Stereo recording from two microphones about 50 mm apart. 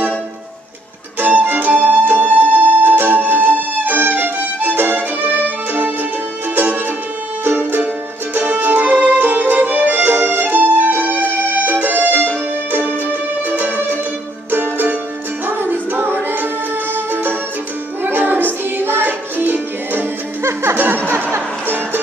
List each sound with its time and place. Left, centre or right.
1.2 s music: right
8.9 s music: right
9.2 s music: right